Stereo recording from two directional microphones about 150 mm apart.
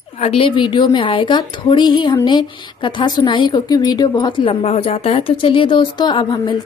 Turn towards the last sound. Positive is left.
turn(degrees=30)  # may be behind; listen again after turning